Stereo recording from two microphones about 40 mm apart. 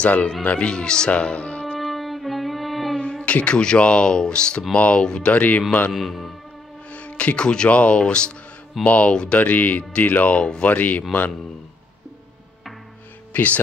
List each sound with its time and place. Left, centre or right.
0.0 s speech: left
0.6 s speech: left
1.8 s music: centre
3.3 s speech: left
3.5 s speech: left
5.0 s speech: centre
5.3 s speech: left
5.9 s a man's voice: centre
6.9 s speech: left
8.8 s speech: left
9.1 s speech: left
9.4 s speech: left
10.6 s speech: left
13.3 s speech: left